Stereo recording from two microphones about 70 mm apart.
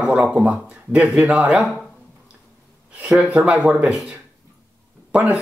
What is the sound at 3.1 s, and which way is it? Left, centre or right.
Speech, centre.